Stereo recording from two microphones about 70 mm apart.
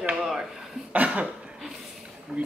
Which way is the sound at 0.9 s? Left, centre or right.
Centre.